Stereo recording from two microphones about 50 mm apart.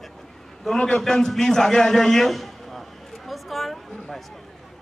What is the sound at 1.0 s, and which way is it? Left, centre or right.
A man's voice, centre.